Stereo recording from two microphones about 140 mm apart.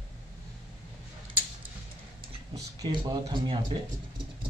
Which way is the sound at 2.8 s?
30° right (ahead or behind).